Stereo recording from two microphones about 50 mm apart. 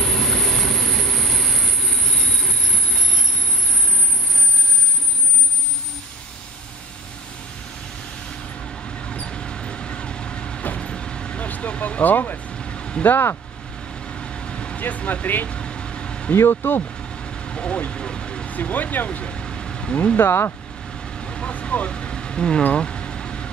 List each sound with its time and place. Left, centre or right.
0.0 s train: centre
9.1 s train: centre
10.8 s vehicle: centre
11.4 s speech: left
12.5 s vehicle: centre
14.0 s vehicle: centre
14.8 s speech: left
15.4 s vehicle: left
16.3 s speech: left
17.2 s vehicle: centre
17.9 s speech: centre
19.3 s vehicle: centre
20.2 s speech: left
21.2 s vehicle: centre